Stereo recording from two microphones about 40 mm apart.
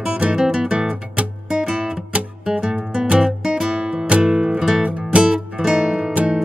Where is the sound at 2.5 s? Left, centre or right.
Right.